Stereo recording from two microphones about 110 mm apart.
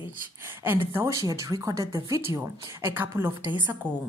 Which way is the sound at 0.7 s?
20° right (ahead or behind).